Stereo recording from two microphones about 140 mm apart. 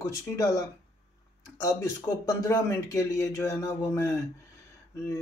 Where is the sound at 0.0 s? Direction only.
25° left (ahead or behind).